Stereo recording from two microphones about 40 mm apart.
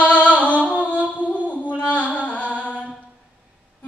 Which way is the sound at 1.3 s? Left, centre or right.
Left.